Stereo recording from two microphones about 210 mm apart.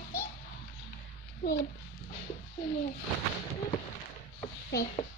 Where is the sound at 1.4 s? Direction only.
45° left (ahead or behind).